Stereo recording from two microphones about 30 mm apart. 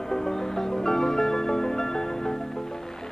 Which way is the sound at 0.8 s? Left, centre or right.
Centre.